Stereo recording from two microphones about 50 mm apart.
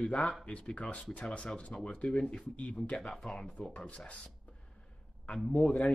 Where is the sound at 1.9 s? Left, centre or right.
Left.